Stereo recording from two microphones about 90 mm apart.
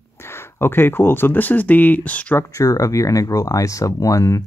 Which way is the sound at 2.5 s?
40° left (ahead or behind).